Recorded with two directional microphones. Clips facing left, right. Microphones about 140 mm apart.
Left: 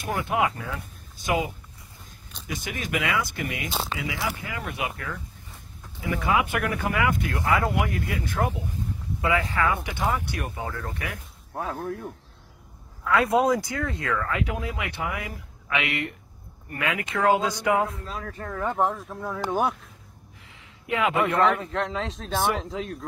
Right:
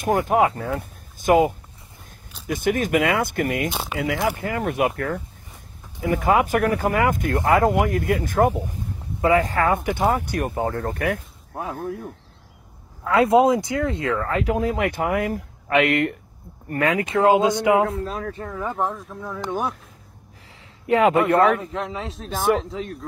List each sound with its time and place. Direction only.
0.0 s speech: 45° right (ahead or behind)
3.7 s speech: 10° right (ahead or behind)
4.0 s speech: 60° right (ahead or behind)
4.4 s speech: 50° right (ahead or behind)
11.5 s speech: 15° right (ahead or behind)
13.0 s speech: 30° right (ahead or behind)
18.0 s speech: 45° right (ahead or behind)
18.5 s speech: 5° right (ahead or behind)
20.8 s speech: 40° right (ahead or behind)
21.3 s speech: 50° right (ahead or behind)
21.5 s speech: 5° right (ahead or behind)